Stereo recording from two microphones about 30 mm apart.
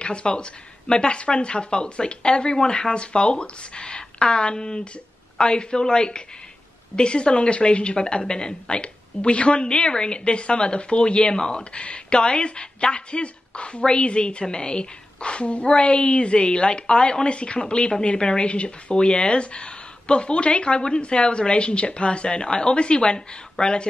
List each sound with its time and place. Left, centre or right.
0.0 s a woman's voice: left
11.8 s a woman's voice: left